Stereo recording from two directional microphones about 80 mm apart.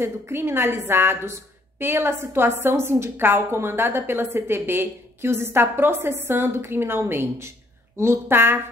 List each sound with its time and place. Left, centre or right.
0.0 s a woman's voice: right